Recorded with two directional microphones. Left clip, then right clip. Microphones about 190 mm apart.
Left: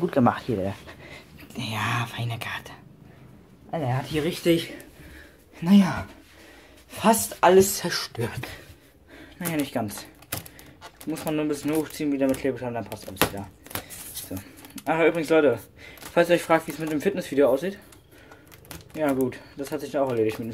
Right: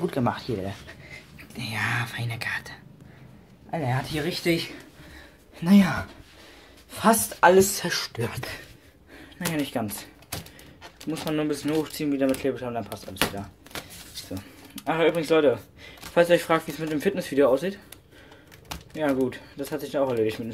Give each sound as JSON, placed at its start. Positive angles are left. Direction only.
{"t": 0.0, "sound": "speech", "side_deg": 20}
{"t": 11.1, "sound": "speech", "side_deg": 0}
{"t": 14.4, "sound": "speech", "side_deg": 5}
{"t": 18.9, "sound": "speech", "side_deg": 5}